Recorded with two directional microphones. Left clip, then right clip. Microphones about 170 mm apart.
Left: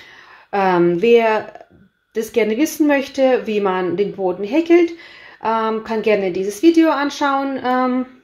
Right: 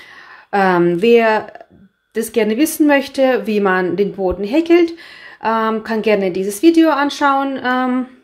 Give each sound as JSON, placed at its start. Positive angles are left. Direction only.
{"t": 0.5, "sound": "speech", "side_deg": -15}